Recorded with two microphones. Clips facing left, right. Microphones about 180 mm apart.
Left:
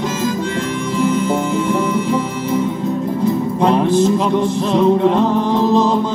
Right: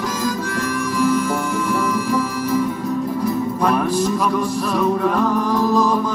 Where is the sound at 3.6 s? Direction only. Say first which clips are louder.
Left 6 dB; 25° left (ahead or behind).